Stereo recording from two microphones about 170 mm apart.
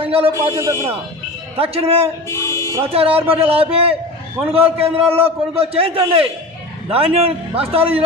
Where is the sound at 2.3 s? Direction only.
15° left (ahead or behind).